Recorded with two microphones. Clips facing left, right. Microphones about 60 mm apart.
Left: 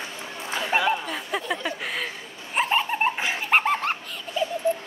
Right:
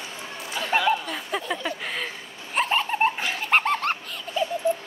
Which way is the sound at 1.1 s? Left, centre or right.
Centre.